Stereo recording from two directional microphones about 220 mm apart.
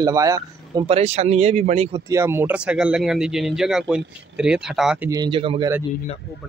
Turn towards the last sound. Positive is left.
turn(degrees=-25)  # may be behind; listen again after turning